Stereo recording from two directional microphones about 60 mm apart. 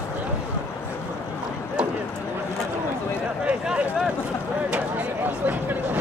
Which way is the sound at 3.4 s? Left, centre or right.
Centre.